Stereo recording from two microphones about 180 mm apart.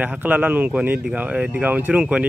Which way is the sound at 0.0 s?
10° right (ahead or behind).